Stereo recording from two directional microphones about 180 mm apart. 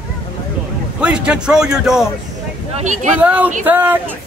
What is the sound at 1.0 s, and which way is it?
Speech, 5° right (ahead or behind).